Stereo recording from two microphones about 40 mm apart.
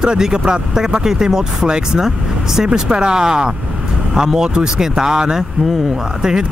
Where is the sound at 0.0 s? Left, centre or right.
Centre.